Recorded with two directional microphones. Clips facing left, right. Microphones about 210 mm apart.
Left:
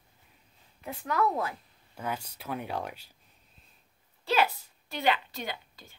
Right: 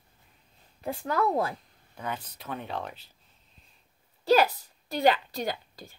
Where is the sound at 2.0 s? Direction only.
10° left (ahead or behind).